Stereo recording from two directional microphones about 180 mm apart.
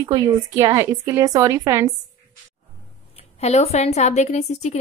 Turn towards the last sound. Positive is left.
turn(degrees=40)  # may be behind; listen again after turning